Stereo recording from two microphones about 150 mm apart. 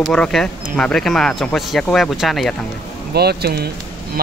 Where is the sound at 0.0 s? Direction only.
5° left (ahead or behind).